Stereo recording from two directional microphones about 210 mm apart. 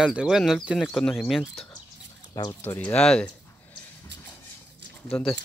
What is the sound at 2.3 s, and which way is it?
Speech, 20° left (ahead or behind).